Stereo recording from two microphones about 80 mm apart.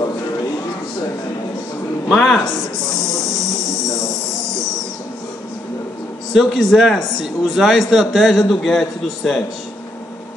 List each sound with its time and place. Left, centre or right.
2.0 s a man's voice: centre
2.9 s insect: right
6.3 s a man's voice: centre